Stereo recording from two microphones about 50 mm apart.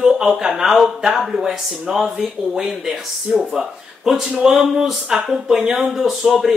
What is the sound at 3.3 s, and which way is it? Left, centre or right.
Speech, centre.